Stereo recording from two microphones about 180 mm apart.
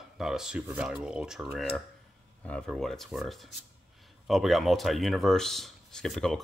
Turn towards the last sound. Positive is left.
turn(degrees=0)  # may be behind; listen again after turning